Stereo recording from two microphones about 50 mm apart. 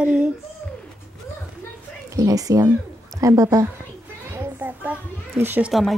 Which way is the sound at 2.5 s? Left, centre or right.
Right.